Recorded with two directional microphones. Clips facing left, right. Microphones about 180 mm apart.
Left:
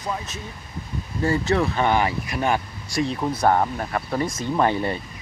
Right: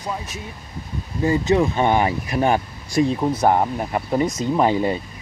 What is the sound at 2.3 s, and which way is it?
Speech, 30° right (ahead or behind).